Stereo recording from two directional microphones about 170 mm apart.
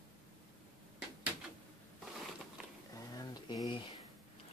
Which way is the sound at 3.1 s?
20° left (ahead or behind).